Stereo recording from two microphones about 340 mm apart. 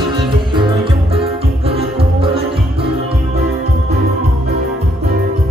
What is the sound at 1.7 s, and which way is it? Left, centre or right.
Music, centre.